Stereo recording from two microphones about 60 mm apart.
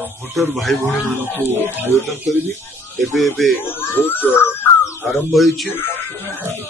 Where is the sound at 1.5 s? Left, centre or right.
Right.